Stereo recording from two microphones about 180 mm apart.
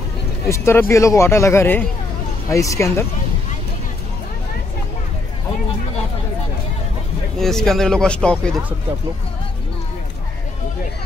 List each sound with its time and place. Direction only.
0.5 s a man's voice: 15° left (ahead or behind)
7.3 s speech: centre (ahead or behind)